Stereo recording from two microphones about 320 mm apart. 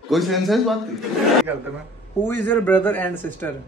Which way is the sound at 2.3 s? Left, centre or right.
Centre.